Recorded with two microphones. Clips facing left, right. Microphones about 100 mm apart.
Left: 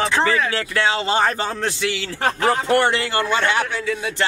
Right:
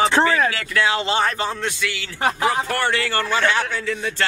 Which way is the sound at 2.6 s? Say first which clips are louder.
Left 4 dB; 20° left (ahead or behind).